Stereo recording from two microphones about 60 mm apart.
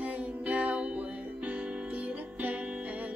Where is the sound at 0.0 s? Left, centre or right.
Right.